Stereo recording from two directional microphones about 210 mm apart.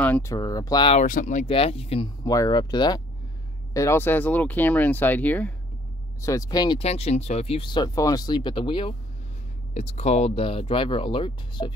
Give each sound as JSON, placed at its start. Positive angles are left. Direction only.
{"t": 0.0, "sound": "speech", "side_deg": 10}
{"t": 1.0, "sound": "speech", "side_deg": 40}